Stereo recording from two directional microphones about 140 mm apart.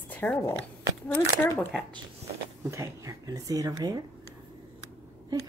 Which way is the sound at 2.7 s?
20° right (ahead or behind).